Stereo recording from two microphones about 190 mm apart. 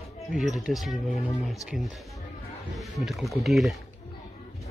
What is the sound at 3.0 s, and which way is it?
Speech, centre (ahead or behind).